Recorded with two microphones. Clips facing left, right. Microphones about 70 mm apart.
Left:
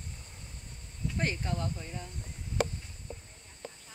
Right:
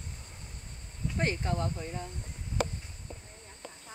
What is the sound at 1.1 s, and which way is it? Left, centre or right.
Speech, right.